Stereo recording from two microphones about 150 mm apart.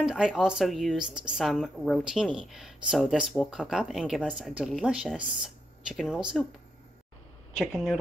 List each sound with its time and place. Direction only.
0.0 s a woman's voice: 5° right (ahead or behind)
7.5 s a woman's voice: 5° right (ahead or behind)